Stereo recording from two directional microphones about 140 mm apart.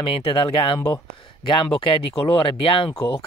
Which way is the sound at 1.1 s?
35° left (ahead or behind).